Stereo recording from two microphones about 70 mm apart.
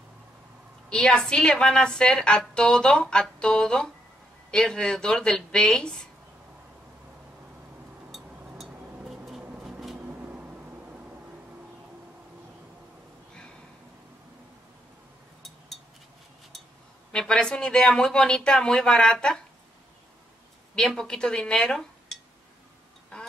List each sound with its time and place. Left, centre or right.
0.8 s a woman's voice: centre
8.1 s a sound: centre
9.6 s vehicle: centre
10.0 s a sound: right
17.1 s a woman's voice: centre
20.7 s speech: centre